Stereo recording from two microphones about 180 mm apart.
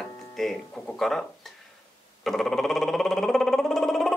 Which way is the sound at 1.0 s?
Centre (ahead or behind).